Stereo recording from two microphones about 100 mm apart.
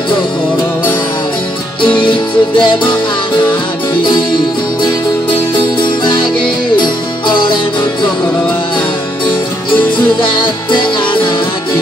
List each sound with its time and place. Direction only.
2.0 s music: 55° left (ahead or behind)
4.0 s music: 50° left (ahead or behind)
5.6 s music: 55° left (ahead or behind)
9.8 s music: 55° left (ahead or behind)